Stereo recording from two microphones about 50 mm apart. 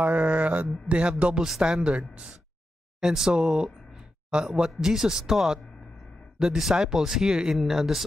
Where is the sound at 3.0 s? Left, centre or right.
Centre.